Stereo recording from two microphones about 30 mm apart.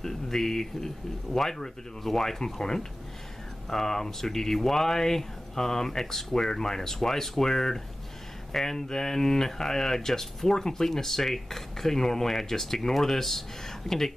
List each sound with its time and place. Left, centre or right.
0.0 s speech: centre